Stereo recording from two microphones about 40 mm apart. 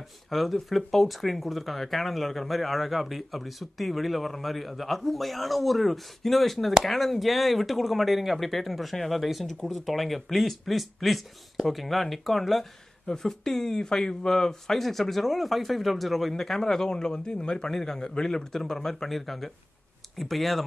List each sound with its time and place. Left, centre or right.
0.3 s speech: centre
13.0 s a man's voice: centre
17.6 s a man's voice: centre